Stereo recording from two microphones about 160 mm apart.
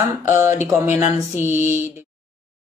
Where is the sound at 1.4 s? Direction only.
15° right (ahead or behind).